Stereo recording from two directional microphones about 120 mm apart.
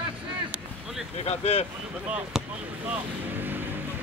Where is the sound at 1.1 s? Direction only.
60° left (ahead or behind).